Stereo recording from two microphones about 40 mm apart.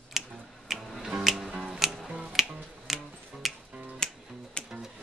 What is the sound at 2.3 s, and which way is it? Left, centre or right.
Finger snapping, centre.